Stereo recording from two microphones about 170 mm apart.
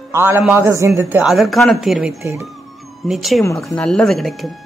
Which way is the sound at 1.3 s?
Centre (ahead or behind).